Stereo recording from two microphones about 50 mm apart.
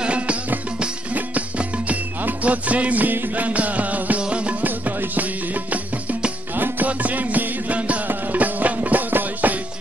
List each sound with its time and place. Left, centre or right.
0.0 s music: right
4.6 s music: right